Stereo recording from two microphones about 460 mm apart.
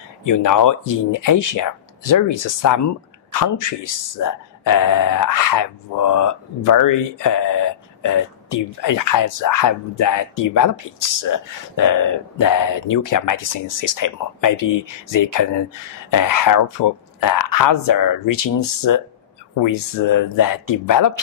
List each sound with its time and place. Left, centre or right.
0.2 s speech: left